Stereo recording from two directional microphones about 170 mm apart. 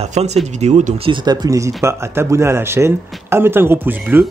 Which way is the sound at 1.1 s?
25° right (ahead or behind).